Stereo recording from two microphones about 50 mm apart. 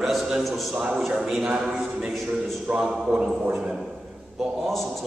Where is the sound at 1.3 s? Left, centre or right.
Centre.